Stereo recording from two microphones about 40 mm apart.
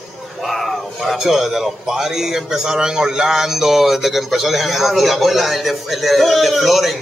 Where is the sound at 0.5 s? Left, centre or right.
Centre.